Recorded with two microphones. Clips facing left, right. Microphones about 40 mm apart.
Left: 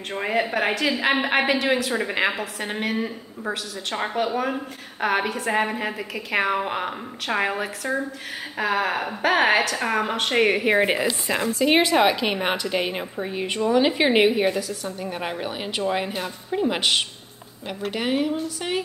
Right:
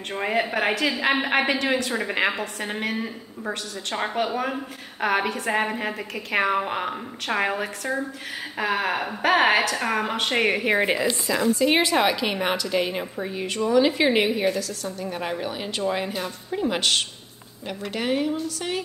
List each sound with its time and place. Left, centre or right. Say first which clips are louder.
0.1 s a woman's voice: left 1 dB; centre
11.2 s a woman's voice: right 2 dB; left
11.5 s a woman's voice: left 4 dB; centre